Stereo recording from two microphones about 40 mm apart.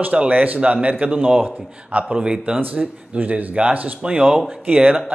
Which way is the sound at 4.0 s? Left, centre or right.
Right.